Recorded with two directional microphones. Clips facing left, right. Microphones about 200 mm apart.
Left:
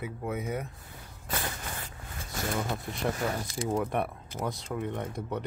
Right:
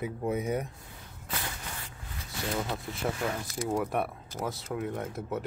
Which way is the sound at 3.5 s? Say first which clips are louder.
Right 1 dB; 5° right (ahead or behind).